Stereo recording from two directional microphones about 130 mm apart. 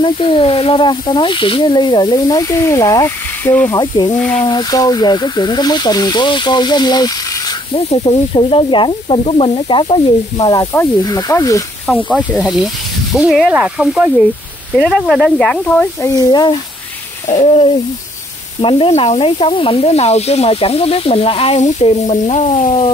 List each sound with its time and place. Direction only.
0.0 s speech: 45° left (ahead or behind); by 11.6 s 25° left (ahead or behind)
12.1 s speech: centre (ahead or behind)
16.0 s speech: 30° left (ahead or behind)
17.3 s speech: 50° left (ahead or behind)
21.8 s speech: 55° left (ahead or behind)